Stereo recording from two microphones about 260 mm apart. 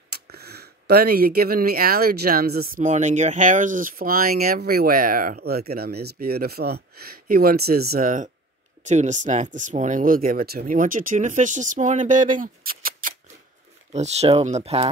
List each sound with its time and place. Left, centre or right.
0.1 s speech: right